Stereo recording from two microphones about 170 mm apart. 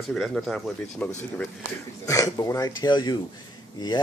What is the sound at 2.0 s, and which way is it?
Speech, 20° left (ahead or behind).